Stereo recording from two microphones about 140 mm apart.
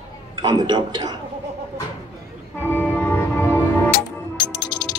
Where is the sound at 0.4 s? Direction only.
30° right (ahead or behind).